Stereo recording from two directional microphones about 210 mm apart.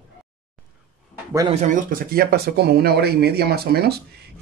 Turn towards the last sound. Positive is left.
turn(degrees=-50)  # may be behind; listen again after turning